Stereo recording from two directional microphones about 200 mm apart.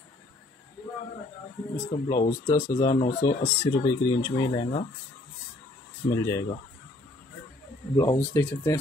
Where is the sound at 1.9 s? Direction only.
20° left (ahead or behind).